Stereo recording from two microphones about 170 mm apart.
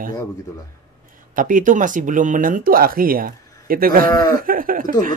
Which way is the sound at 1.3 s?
50° right (ahead or behind).